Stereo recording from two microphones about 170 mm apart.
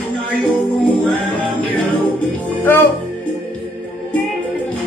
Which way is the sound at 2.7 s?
15° left (ahead or behind).